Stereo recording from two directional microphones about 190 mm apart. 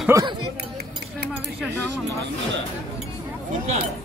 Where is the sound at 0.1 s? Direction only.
15° right (ahead or behind).